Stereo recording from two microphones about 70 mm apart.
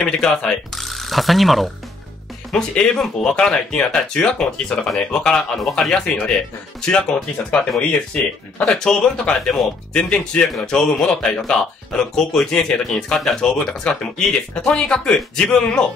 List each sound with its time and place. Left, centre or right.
0.0 s speech: centre
2.5 s speech: centre